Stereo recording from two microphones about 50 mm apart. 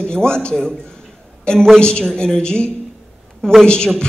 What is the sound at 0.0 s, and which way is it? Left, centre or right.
A woman's voice, centre.